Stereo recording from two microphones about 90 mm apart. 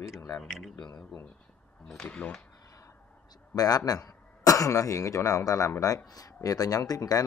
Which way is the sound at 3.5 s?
45° left (ahead or behind).